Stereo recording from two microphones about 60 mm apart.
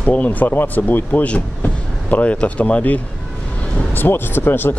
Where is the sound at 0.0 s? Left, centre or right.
Left.